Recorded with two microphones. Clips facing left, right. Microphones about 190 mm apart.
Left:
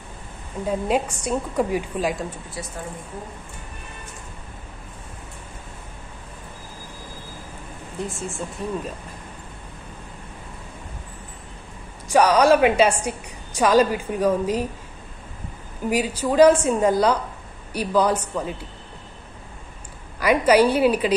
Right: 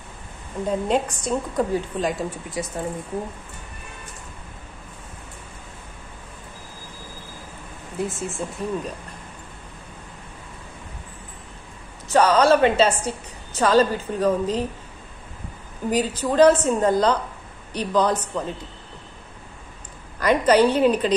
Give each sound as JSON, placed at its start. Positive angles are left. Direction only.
{"t": 0.7, "sound": "a woman's voice", "side_deg": 5}
{"t": 2.6, "sound": "speech", "side_deg": -20}
{"t": 8.1, "sound": "speech", "side_deg": 0}
{"t": 12.1, "sound": "a woman's voice", "side_deg": 10}
{"t": 15.9, "sound": "a woman's voice", "side_deg": 10}
{"t": 20.2, "sound": "a woman's voice", "side_deg": 10}